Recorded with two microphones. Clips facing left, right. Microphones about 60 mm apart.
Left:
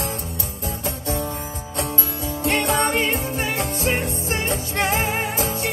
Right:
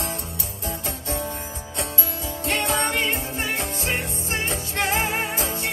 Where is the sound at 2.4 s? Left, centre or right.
Left.